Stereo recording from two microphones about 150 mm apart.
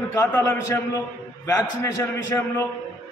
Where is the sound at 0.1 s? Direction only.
20° left (ahead or behind).